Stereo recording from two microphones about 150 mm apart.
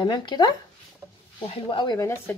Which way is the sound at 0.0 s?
30° left (ahead or behind).